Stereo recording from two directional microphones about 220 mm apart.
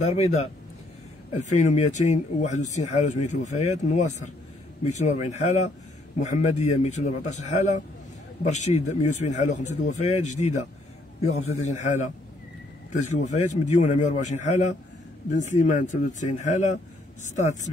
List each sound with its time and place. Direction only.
0.0 s a man's voice: 30° left (ahead or behind)
13.1 s speech: 30° left (ahead or behind)